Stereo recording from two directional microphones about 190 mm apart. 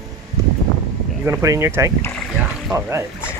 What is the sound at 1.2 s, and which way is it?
Speech, 15° right (ahead or behind).